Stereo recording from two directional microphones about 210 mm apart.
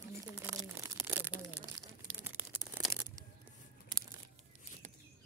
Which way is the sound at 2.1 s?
10° right (ahead or behind).